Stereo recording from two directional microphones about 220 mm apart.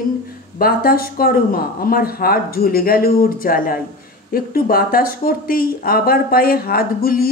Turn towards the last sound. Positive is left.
turn(degrees=45)  # may be behind; listen again after turning